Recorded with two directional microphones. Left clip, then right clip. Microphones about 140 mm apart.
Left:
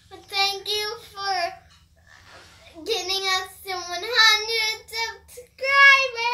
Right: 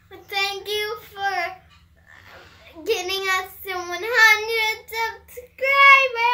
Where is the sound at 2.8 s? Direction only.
30° right (ahead or behind).